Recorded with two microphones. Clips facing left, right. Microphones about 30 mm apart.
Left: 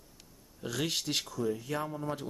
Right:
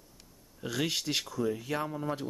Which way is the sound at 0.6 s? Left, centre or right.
Centre.